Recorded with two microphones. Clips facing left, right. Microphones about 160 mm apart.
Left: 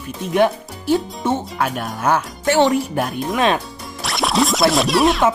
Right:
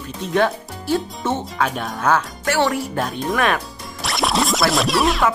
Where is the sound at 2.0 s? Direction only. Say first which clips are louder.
Left 2 dB; 20° left (ahead or behind).